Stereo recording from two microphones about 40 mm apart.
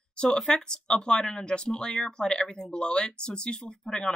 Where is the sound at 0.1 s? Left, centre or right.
Left.